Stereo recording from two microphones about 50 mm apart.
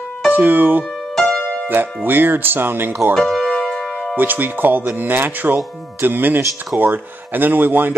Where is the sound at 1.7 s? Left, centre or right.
Right.